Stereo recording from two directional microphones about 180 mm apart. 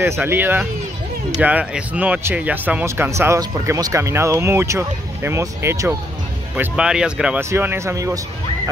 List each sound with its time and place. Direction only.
0.0 s speech: 15° right (ahead or behind)